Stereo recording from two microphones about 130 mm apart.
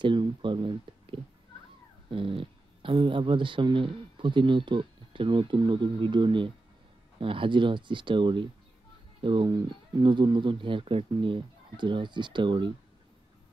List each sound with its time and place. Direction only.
0.0 s speech: 40° right (ahead or behind)